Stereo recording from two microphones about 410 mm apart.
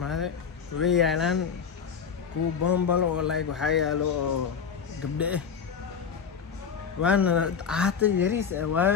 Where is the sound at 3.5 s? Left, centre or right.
Centre.